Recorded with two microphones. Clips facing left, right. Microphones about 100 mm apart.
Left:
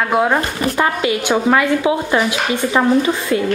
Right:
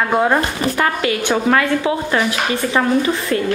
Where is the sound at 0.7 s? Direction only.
20° left (ahead or behind).